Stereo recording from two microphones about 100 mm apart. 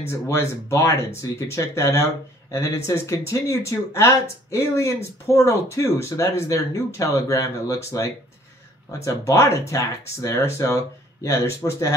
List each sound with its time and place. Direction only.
0.1 s speech: 30° left (ahead or behind)